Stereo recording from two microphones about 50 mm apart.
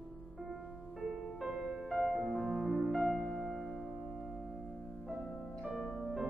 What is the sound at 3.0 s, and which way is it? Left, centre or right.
Music, centre.